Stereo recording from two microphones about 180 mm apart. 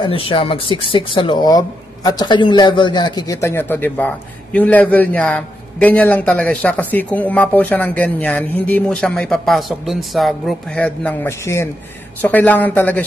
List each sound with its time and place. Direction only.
0.0 s a man's voice: 30° left (ahead or behind); by 13.0 s 10° left (ahead or behind)